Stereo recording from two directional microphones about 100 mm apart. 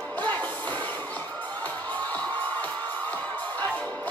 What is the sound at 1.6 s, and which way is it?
Music, 15° left (ahead or behind).